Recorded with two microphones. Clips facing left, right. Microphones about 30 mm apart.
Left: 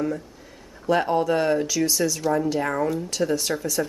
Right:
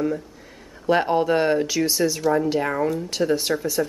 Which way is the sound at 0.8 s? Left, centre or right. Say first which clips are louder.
Right 2 dB; right.